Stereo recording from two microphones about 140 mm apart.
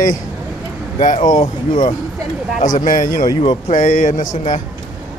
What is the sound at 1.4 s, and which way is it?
Speech, 45° left (ahead or behind).